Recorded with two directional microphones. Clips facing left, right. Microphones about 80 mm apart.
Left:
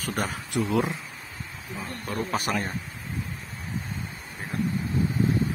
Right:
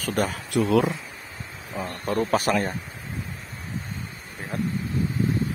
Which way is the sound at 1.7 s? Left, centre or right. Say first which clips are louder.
Right 6 dB; right.